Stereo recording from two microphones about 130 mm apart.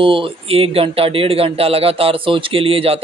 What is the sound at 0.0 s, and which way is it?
Speech, 40° right (ahead or behind).